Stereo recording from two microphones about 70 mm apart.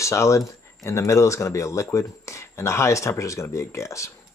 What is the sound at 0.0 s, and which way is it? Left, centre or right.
Speech, left.